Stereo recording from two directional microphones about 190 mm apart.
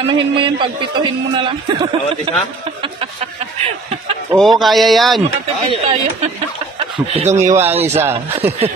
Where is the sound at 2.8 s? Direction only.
30° right (ahead or behind).